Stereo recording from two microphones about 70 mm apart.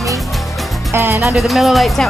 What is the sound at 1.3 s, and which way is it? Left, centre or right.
Speech, centre.